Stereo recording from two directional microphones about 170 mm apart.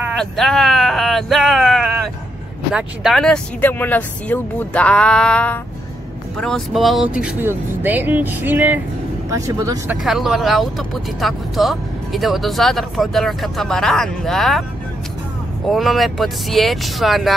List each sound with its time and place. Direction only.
0.2 s speech: centre (ahead or behind); by 9.9 s 20° right (ahead or behind)
10.0 s speech: centre (ahead or behind)
15.6 s speech: centre (ahead or behind)